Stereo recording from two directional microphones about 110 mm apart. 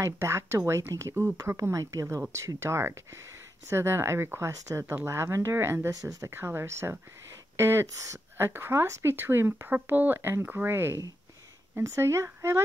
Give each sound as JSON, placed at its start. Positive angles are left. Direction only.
{"t": 0.0, "sound": "speech", "side_deg": -25}